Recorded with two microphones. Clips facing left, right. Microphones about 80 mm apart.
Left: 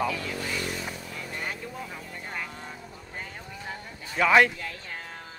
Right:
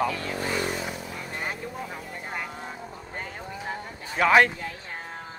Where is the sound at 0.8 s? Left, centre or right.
Centre.